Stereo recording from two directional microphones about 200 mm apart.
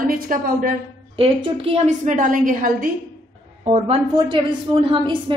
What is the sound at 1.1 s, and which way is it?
A woman's voice, 30° right (ahead or behind).